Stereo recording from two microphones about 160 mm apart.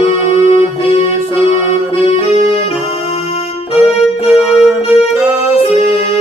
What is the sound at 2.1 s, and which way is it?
Music, 40° left (ahead or behind).